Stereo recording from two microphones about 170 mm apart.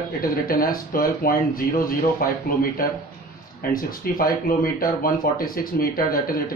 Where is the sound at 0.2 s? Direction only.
60° left (ahead or behind).